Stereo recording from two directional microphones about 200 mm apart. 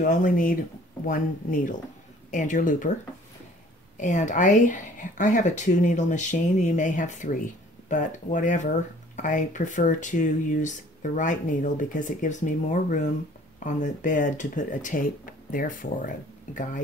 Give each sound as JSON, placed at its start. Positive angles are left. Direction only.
{"t": 0.0, "sound": "speech", "side_deg": 40}
{"t": 4.0, "sound": "speech", "side_deg": 40}